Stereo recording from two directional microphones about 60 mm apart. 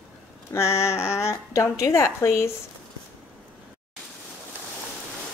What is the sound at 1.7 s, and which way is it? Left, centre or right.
Speech, left.